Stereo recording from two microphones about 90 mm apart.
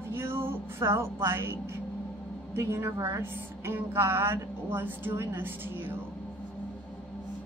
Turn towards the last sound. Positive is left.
turn(degrees=-25)  # may be behind; listen again after turning